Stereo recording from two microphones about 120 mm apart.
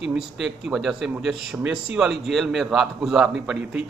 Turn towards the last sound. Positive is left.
turn(degrees=-10)  # may be behind; listen again after turning